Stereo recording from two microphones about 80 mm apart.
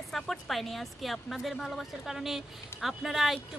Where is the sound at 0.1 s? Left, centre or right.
Centre.